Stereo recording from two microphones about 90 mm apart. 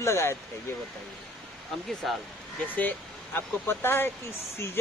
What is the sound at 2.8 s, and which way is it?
Speech, 20° left (ahead or behind).